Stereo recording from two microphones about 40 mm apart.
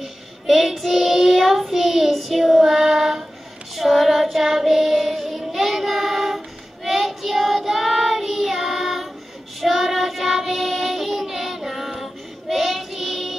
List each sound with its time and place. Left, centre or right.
0.0 s child singing: centre